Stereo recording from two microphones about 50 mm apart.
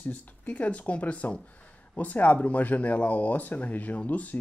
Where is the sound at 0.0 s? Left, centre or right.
Left.